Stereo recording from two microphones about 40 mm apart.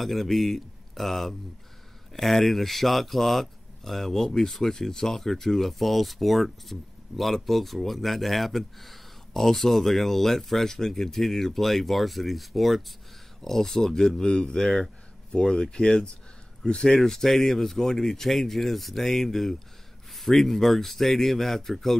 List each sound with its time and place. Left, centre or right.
0.0 s speech: centre